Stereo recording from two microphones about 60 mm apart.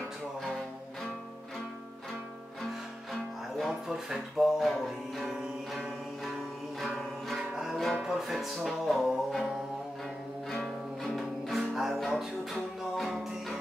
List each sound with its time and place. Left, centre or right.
3.1 s music: centre
10.5 s music: centre